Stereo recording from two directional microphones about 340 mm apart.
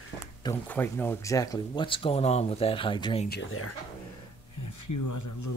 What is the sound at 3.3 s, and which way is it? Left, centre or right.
Speech, left.